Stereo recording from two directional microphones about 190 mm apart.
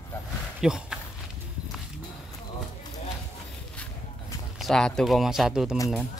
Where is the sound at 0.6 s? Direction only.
5° right (ahead or behind).